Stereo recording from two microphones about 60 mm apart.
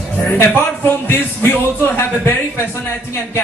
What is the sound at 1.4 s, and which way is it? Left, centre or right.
Speech, left.